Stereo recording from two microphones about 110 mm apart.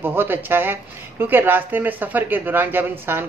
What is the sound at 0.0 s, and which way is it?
Speech, 20° right (ahead or behind).